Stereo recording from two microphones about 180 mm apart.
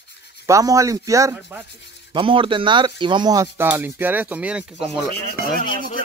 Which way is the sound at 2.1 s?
30° right (ahead or behind).